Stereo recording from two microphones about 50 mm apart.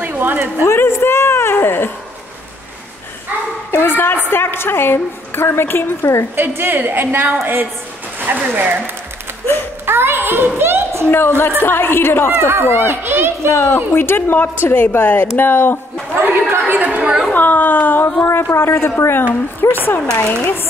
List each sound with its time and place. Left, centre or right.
0.0 s a woman's voice: right
0.7 s a sound: left
3.7 s a woman's voice: left
6.3 s a woman's voice: right
9.8 s a sound: right
11.1 s a woman's voice: left
12.4 s a woman's voice: right
13.7 s a woman's voice: left
14.0 s a woman's voice: left
14.3 s a woman's voice: left
16.5 s a woman's voice: right
17.0 s a sound: centre
17.3 s a sound: left
18.2 s a woman's voice: left